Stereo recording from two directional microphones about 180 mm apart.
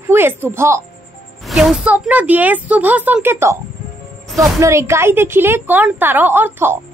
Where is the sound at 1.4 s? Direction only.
Centre (ahead or behind).